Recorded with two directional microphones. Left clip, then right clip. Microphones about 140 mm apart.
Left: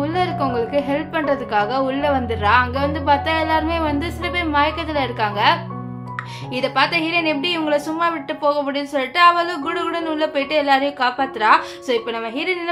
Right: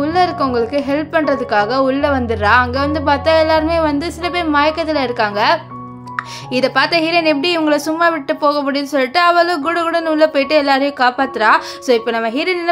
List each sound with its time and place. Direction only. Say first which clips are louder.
0.0 s a woman's voice: right 6 dB; 45° right (ahead or behind)